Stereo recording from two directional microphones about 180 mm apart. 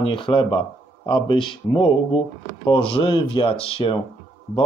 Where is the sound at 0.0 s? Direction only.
30° left (ahead or behind).